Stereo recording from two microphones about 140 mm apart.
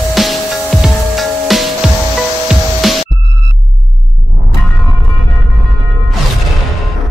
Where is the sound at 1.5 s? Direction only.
Centre (ahead or behind).